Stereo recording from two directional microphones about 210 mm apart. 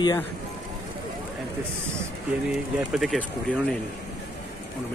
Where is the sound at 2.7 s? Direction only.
Centre (ahead or behind).